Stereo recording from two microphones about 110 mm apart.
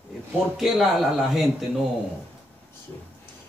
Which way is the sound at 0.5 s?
5° right (ahead or behind).